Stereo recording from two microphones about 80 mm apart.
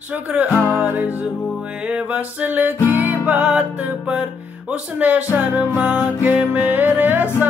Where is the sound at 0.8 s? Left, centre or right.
Centre.